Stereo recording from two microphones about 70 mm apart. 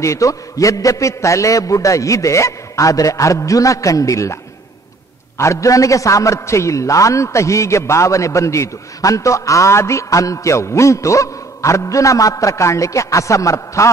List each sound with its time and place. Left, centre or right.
0.0 s a man's voice: left
5.4 s a man's voice: left